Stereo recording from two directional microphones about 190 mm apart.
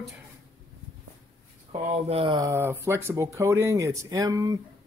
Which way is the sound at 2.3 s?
15° right (ahead or behind).